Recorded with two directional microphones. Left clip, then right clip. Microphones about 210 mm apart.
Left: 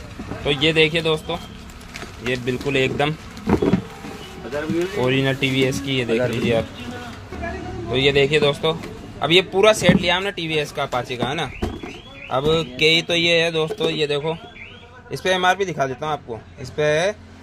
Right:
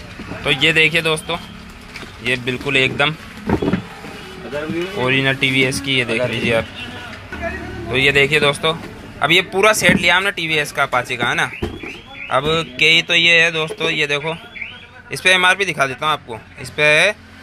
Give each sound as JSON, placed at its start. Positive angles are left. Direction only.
{"t": 0.4, "sound": "speech", "side_deg": 10}
{"t": 4.9, "sound": "speech", "side_deg": 15}
{"t": 7.9, "sound": "a man's voice", "side_deg": 10}